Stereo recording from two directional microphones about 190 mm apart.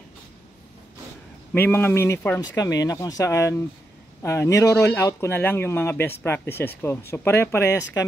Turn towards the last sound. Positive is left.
turn(degrees=15)  # may be behind; listen again after turning